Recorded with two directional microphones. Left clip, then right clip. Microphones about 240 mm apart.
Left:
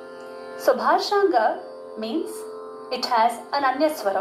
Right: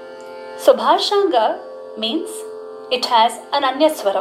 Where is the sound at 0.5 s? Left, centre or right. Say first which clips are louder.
Right 6 dB; right.